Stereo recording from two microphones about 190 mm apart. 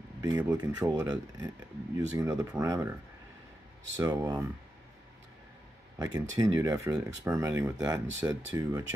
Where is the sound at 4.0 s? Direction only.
20° right (ahead or behind).